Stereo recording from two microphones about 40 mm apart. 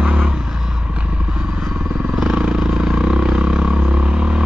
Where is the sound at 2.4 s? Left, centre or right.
Centre.